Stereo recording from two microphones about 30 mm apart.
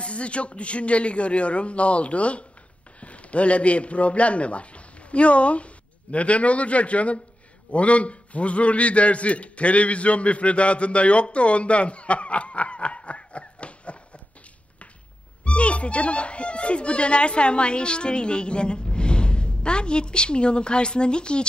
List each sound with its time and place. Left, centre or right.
0.0 s a man's voice: left
15.4 s speech: left